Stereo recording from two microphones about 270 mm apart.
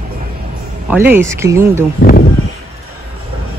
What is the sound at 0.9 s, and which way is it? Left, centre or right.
Speech, centre.